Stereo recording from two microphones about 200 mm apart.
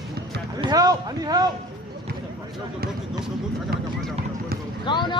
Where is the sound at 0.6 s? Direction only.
20° right (ahead or behind).